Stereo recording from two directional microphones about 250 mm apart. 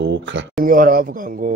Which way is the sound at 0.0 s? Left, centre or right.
Right.